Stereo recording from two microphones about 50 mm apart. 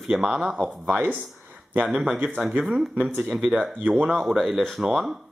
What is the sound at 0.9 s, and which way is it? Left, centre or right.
Speech, right.